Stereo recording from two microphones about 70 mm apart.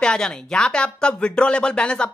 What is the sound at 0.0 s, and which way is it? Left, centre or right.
Speech, centre.